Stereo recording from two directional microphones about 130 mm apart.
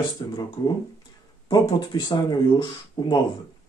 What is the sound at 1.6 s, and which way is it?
Speech, 30° left (ahead or behind).